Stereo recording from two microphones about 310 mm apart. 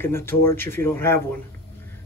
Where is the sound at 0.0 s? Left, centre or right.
Centre.